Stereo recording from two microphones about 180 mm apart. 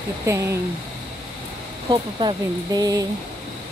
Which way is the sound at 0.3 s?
15° right (ahead or behind).